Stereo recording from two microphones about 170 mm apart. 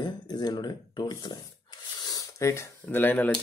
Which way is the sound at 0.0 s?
25° left (ahead or behind).